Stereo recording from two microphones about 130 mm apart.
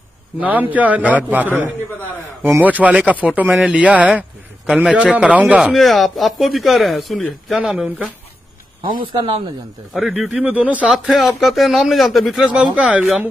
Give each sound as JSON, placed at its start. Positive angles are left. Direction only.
{"t": 0.4, "sound": "a man's voice", "side_deg": -10}
{"t": 9.0, "sound": "speech", "side_deg": -40}
{"t": 9.9, "sound": "speech", "side_deg": -5}